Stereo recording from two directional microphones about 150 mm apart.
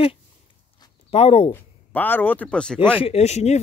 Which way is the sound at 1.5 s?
10° left (ahead or behind).